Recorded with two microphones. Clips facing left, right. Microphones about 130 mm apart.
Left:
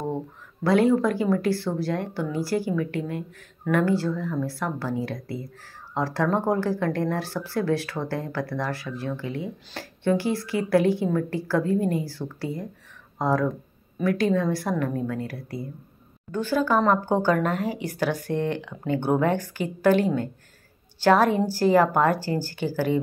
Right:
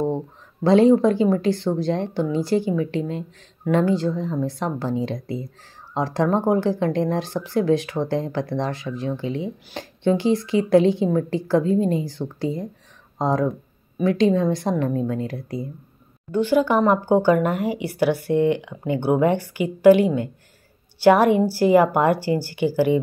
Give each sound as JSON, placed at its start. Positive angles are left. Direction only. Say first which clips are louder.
{"t": 0.7, "sound": "speech", "louder": "right 5 dB", "side_deg": -25}